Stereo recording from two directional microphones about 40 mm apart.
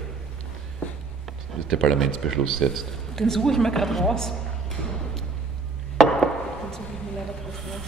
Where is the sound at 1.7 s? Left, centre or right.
Centre.